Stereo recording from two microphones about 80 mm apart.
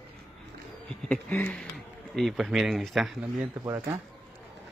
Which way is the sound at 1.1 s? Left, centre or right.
Centre.